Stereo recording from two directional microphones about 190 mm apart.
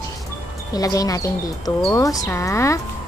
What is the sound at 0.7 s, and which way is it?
Speech, 20° left (ahead or behind).